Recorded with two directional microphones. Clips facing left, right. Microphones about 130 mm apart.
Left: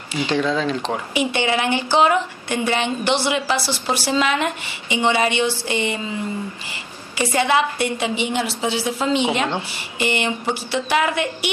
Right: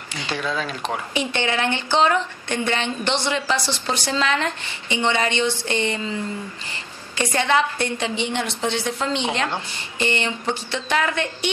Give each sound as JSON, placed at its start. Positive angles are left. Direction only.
{"t": 0.5, "sound": "speech", "side_deg": 35}
{"t": 1.1, "sound": "a woman's voice", "side_deg": 10}
{"t": 7.2, "sound": "a woman's voice", "side_deg": 10}